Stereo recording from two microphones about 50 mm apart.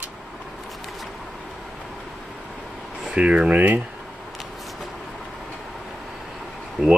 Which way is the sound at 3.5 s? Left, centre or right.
Right.